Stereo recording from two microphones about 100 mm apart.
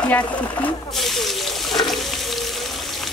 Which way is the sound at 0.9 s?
Centre (ahead or behind).